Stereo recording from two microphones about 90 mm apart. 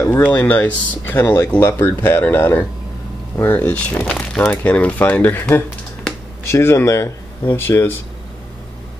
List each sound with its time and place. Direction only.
0.0 s speech: 25° left (ahead or behind)